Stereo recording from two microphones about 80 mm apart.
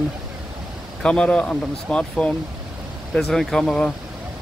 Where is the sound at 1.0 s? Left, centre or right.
Centre.